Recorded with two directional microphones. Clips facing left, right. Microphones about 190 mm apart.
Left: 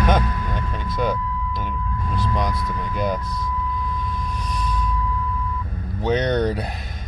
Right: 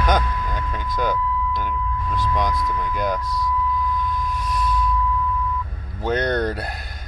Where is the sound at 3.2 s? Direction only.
90° right.